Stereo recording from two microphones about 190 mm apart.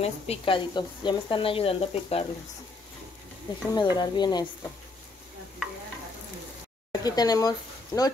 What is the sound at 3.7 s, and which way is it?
Speech, 20° left (ahead or behind).